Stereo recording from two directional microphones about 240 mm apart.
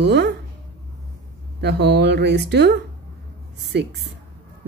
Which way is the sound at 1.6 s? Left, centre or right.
Right.